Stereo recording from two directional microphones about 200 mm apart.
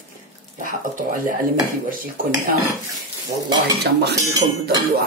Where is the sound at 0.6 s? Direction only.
45° right (ahead or behind).